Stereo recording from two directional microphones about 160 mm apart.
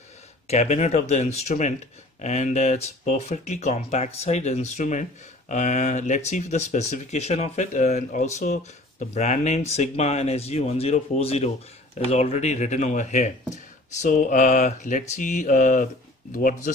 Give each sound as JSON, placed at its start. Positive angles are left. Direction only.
{"t": 0.5, "sound": "speech", "side_deg": 45}